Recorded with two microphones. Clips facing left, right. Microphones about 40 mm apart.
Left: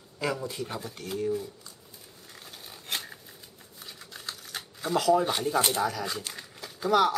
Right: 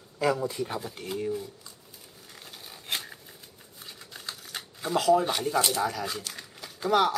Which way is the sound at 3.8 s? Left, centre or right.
Centre.